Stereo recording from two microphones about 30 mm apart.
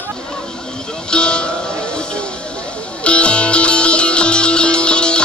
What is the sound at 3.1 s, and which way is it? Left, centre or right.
Music, left.